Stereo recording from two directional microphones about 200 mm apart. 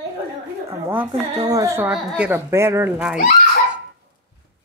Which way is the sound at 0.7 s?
15° right (ahead or behind).